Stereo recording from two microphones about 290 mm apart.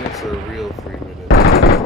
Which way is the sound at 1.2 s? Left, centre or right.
Left.